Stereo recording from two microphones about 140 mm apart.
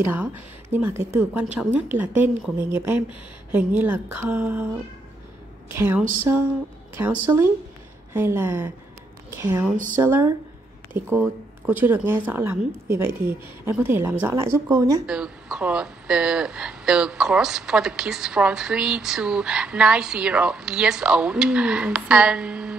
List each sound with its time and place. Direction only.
0.0 s a woman's voice: 15° right (ahead or behind)
5.7 s a woman's voice: 15° right (ahead or behind)
7.3 s a woman's voice: 20° right (ahead or behind)
15.0 s a woman's voice: 5° right (ahead or behind)